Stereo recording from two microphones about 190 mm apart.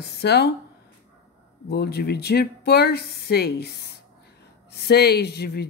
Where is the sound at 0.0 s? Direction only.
60° left (ahead or behind).